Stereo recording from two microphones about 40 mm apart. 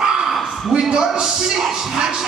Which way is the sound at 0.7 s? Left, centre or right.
Right.